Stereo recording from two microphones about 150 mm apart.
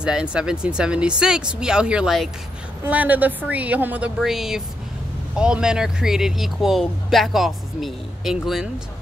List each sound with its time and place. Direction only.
0.0 s a woman's voice: 5° right (ahead or behind)